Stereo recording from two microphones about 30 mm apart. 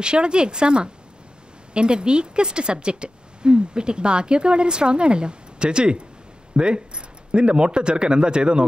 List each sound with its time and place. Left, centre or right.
0.0 s speech: right